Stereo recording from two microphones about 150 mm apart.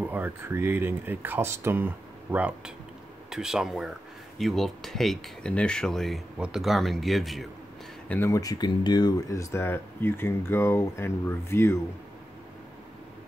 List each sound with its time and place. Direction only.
0.0 s speech: 10° right (ahead or behind)
8.1 s speech: 15° left (ahead or behind)